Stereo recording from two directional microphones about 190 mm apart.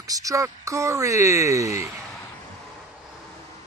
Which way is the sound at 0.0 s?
20° right (ahead or behind).